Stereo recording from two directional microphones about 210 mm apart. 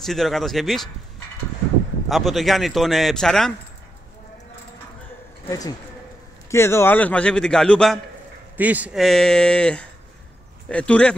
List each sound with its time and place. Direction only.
0.0 s a man's voice: centre (ahead or behind)
2.0 s a man's voice: centre (ahead or behind)
5.5 s a man's voice: 15° left (ahead or behind)
8.5 s a man's voice: 5° right (ahead or behind)